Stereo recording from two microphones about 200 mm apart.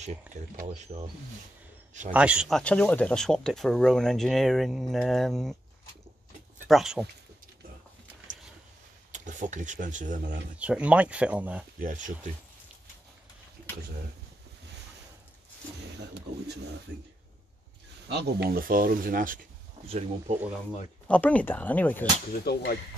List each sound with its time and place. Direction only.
0.3 s speech: 5° right (ahead or behind)
0.7 s speech: 30° right (ahead or behind)
2.1 s speech: 5° right (ahead or behind)
6.7 s speech: centre (ahead or behind)
9.1 s speech: 40° right (ahead or behind)
10.6 s speech: 5° right (ahead or behind)
11.8 s speech: 40° right (ahead or behind)
18.0 s speech: 55° right (ahead or behind)
19.9 s speech: 30° right (ahead or behind)
21.1 s speech: 5° left (ahead or behind)
22.3 s speech: 55° left (ahead or behind)